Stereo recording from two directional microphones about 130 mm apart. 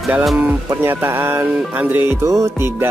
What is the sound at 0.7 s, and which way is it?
Speech, 20° right (ahead or behind).